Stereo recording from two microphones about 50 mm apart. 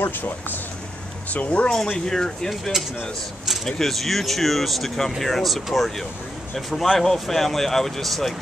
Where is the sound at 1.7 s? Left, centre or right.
Centre.